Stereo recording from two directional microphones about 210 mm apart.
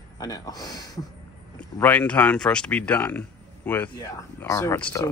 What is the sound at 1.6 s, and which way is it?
Speech, 5° left (ahead or behind).